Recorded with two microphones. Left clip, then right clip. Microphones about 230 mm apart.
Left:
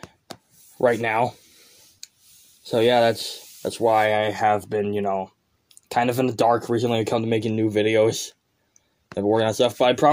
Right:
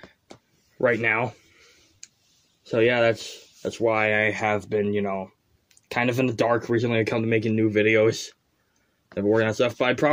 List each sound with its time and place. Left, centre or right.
0.8 s speech: centre
2.6 s speech: centre